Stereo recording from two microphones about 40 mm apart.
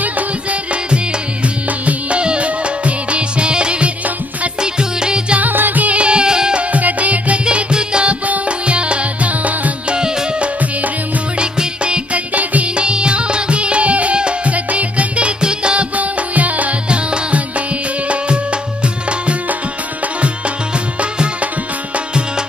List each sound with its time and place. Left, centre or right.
0.8 s music: right
5.4 s music: right
5.9 s music: right
6.7 s music: right
7.4 s music: right
9.8 s music: right
21.0 s music: right